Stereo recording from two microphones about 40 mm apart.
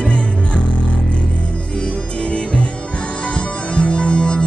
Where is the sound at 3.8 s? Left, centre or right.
Left.